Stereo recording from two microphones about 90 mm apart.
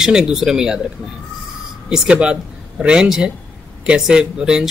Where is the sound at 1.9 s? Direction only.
10° right (ahead or behind).